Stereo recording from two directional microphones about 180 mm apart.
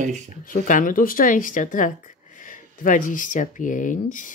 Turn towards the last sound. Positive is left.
turn(degrees=45)  # may be behind; listen again after turning